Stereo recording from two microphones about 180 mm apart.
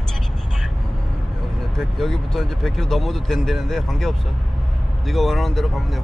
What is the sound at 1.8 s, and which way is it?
Speech, centre (ahead or behind).